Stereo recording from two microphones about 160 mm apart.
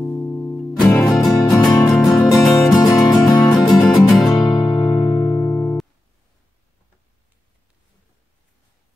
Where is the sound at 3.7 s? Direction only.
Centre (ahead or behind).